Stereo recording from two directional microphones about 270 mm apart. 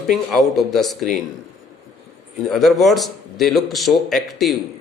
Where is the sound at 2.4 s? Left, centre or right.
Centre.